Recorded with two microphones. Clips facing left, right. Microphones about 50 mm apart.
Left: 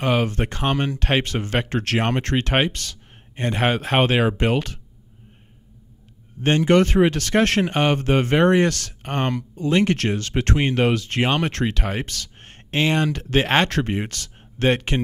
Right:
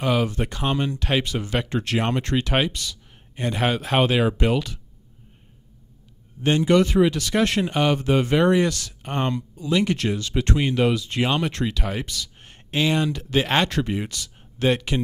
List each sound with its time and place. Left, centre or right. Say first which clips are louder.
0.0 s speech: left 1 dB; left
2.0 s speech: left 1 dB; left
2.2 s speech: left 2 dB; left
6.4 s speech: left 1 dB; left
14.3 s a sound: left 2 dB; left